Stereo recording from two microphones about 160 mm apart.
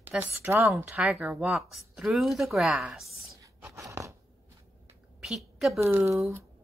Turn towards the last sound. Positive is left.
turn(degrees=-15)  # may be behind; listen again after turning